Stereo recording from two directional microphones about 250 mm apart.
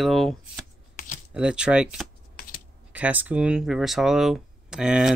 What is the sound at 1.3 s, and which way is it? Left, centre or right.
Speech, centre.